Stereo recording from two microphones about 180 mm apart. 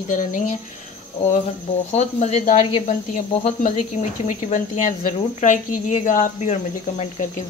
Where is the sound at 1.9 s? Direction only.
40° left (ahead or behind).